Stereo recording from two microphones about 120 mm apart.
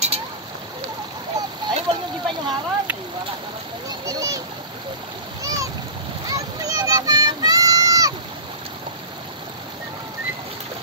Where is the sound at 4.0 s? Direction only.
30° right (ahead or behind).